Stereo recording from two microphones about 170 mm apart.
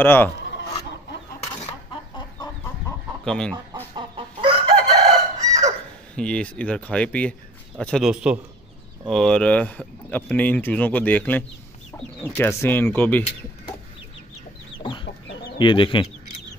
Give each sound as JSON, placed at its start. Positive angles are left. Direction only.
{"t": 0.0, "sound": "speech", "side_deg": 10}
{"t": 3.3, "sound": "speech", "side_deg": 5}
{"t": 3.9, "sound": "chicken", "side_deg": -30}
{"t": 5.4, "sound": "fowl", "side_deg": -20}
{"t": 6.1, "sound": "speech", "side_deg": 5}
{"t": 14.8, "sound": "chicken", "side_deg": 30}
{"t": 15.5, "sound": "speech", "side_deg": 30}